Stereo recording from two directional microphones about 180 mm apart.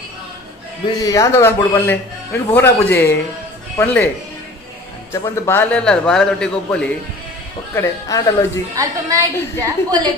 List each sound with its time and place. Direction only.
1.0 s a man's voice: 20° left (ahead or behind)
5.1 s a man's voice: 15° left (ahead or behind)
7.7 s a man's voice: 15° left (ahead or behind)
8.7 s a woman's voice: 20° right (ahead or behind)